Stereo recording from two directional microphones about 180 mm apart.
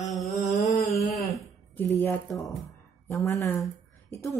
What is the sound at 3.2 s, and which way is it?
Speech, 15° left (ahead or behind).